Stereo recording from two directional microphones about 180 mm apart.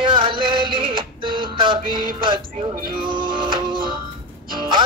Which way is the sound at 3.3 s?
25° right (ahead or behind).